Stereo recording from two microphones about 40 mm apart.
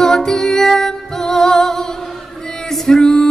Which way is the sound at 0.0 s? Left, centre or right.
Centre.